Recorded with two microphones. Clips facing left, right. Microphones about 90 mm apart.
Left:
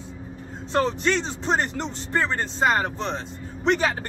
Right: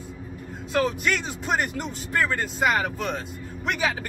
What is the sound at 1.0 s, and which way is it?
A woman's voice, 30° left (ahead or behind).